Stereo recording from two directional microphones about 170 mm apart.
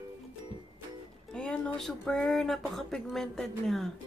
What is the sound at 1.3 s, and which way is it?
Speech, 5° left (ahead or behind).